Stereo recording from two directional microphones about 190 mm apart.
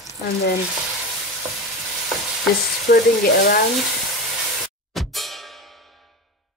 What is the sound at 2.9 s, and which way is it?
Frying, 55° left (ahead or behind).